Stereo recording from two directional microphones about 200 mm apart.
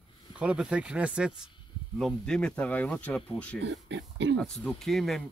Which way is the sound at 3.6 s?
60° right (ahead or behind).